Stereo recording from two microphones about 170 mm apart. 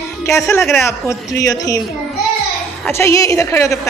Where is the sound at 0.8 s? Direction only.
15° left (ahead or behind).